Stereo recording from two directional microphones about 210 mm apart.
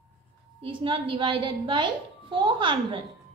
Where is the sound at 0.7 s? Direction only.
25° right (ahead or behind).